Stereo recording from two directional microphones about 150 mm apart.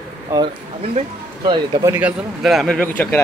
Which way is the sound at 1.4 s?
35° right (ahead or behind).